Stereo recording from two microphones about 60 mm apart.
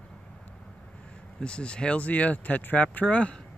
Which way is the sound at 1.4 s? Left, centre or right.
Centre.